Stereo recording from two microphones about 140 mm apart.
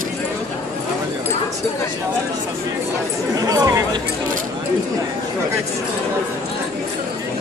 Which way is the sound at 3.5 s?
25° right (ahead or behind).